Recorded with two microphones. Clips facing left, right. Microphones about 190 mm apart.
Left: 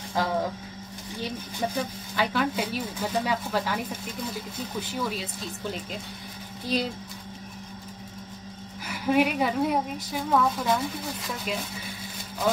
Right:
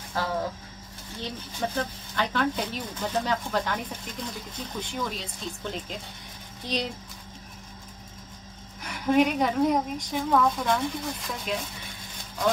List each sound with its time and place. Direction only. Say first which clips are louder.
0.2 s speech: left 2 dB; 15° left (ahead or behind)
8.8 s speech: right 1 dB; 5° left (ahead or behind)